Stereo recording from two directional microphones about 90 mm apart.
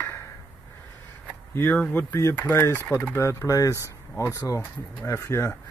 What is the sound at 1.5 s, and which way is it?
Speech, 20° left (ahead or behind).